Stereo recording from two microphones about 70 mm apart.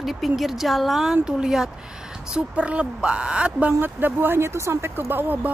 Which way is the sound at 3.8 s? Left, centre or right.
Right.